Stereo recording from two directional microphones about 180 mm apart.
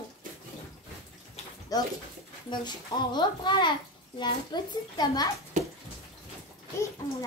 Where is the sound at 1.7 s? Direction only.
20° left (ahead or behind).